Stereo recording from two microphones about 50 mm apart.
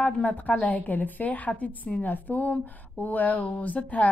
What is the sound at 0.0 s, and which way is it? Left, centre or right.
Speech, left.